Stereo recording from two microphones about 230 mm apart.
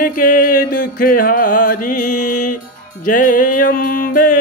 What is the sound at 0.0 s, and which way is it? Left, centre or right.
Music, left.